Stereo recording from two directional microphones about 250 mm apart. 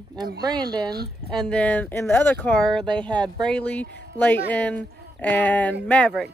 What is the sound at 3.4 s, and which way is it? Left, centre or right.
Speech, centre.